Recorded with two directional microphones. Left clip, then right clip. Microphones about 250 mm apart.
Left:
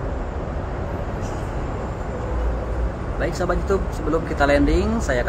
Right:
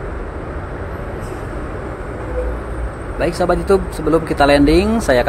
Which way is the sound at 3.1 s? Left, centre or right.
Right.